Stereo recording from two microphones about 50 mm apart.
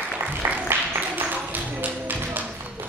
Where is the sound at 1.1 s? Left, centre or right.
Right.